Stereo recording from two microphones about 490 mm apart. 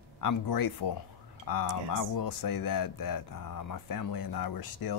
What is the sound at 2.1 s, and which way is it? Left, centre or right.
Speech, left.